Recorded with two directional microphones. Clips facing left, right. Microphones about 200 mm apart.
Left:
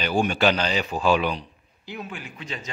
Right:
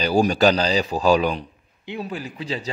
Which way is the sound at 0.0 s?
35° right (ahead or behind).